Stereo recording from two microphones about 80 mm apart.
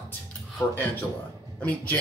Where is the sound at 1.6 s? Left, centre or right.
Centre.